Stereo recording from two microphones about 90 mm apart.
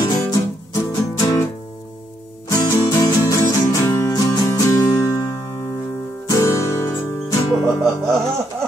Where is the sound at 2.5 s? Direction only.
45° left (ahead or behind).